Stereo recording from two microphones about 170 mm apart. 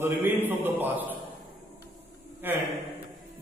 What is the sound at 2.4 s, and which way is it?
Speech, 10° right (ahead or behind).